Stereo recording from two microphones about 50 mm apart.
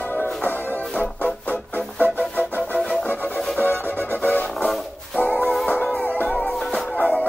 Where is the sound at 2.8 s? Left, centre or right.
Centre.